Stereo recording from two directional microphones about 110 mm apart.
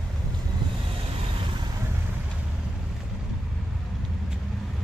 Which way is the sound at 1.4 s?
45° right (ahead or behind).